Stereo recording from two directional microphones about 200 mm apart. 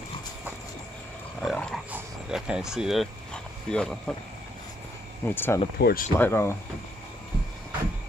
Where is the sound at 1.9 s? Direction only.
5° right (ahead or behind).